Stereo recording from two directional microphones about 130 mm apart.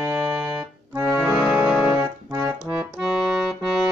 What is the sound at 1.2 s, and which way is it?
Music, 5° right (ahead or behind).